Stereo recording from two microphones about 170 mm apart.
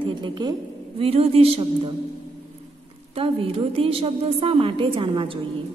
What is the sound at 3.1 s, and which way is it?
A woman's voice, 35° right (ahead or behind).